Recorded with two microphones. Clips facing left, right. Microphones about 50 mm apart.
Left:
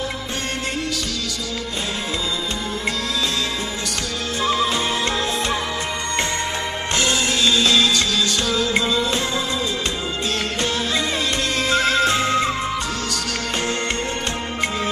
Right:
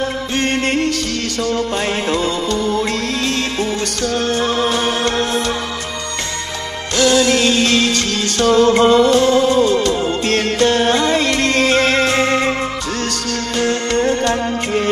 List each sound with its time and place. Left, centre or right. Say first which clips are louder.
4.4 s music: right 3 dB; right
7.0 s music: right 9 dB; left
7.2 s music: right 4 dB; right
13.7 s music: right 7 dB; right